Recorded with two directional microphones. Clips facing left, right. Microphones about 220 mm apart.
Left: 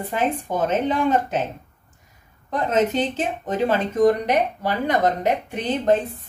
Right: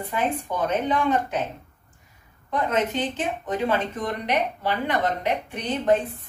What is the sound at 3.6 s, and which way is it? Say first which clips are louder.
Speech: left 10 dB; 40° left (ahead or behind).